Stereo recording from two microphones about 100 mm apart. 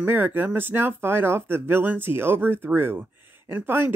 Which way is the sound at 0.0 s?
20° right (ahead or behind).